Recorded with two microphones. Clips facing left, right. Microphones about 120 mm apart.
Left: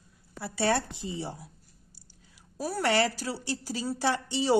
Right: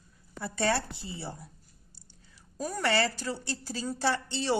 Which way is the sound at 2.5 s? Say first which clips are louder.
Left 2 dB; 10° left (ahead or behind).